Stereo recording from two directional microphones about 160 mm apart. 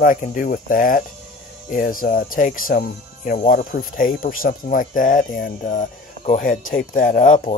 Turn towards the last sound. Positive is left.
turn(degrees=50)  # may be behind; listen again after turning